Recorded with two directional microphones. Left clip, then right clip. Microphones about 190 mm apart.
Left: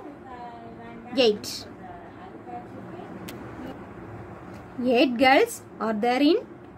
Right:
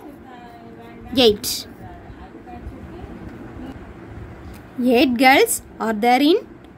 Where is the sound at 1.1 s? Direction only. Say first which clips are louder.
Right 6 dB; 35° right (ahead or behind).